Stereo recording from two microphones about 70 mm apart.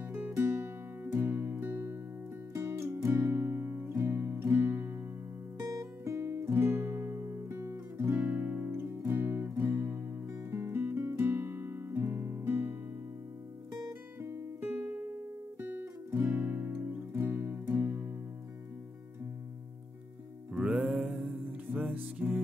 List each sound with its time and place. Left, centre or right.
0.1 s music: right
5.6 s music: right
14.2 s guitar: right
16.7 s music: right
20.5 s music: centre